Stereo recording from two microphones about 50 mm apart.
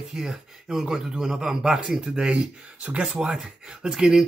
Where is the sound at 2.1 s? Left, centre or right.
Right.